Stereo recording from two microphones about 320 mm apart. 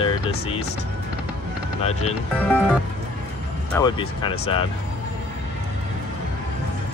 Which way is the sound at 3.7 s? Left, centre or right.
Centre.